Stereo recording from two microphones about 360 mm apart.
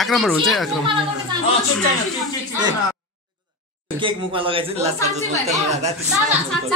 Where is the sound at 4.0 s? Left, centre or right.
Centre.